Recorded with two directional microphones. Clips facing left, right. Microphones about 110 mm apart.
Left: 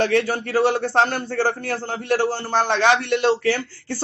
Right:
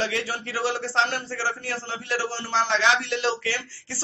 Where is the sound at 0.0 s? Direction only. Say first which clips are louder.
Left 8 dB; 50° left (ahead or behind).